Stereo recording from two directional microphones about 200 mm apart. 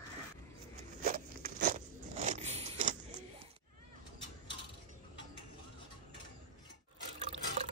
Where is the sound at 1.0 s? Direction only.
40° right (ahead or behind).